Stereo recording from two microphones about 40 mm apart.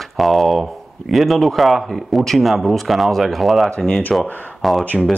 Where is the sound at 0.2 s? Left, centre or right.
Centre.